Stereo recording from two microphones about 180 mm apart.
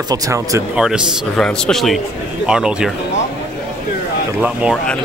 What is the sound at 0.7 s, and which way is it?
A man's voice, 5° right (ahead or behind).